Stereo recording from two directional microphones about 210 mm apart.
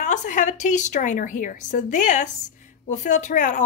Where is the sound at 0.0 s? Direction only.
35° left (ahead or behind).